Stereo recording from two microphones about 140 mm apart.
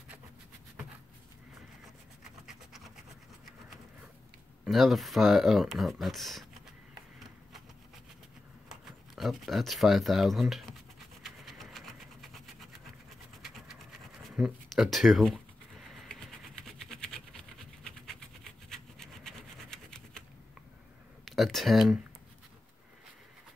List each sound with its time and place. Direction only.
2.4 s a sound: centre (ahead or behind)
4.6 s speech: centre (ahead or behind)
8.6 s speech: centre (ahead or behind)
11.2 s vehicle: centre (ahead or behind)
14.3 s speech: 5° right (ahead or behind)
16.1 s a sound: 5° left (ahead or behind)
17.8 s rub: 5° left (ahead or behind)
21.3 s speech: centre (ahead or behind)